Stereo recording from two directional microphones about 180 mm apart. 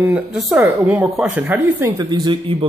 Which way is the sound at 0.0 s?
5° right (ahead or behind).